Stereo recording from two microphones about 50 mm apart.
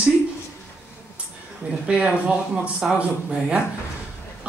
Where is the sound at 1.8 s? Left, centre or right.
Right.